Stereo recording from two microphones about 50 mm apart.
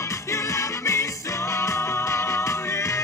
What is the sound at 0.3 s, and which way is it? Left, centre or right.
Music, left.